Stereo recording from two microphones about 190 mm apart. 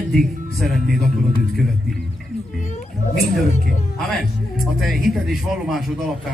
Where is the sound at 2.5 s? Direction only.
45° left (ahead or behind).